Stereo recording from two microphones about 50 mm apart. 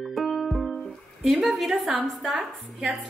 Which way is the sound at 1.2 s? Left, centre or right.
Centre.